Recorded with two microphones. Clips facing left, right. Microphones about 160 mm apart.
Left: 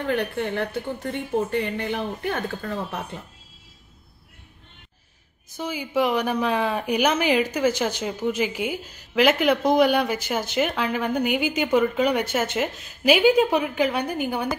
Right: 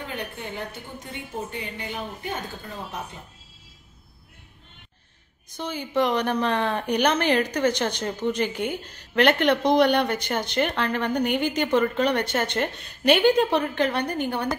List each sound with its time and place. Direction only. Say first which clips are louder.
0.0 s a woman's voice: left 9 dB; 60° left (ahead or behind)
5.5 s a woman's voice: left 1 dB; 10° left (ahead or behind)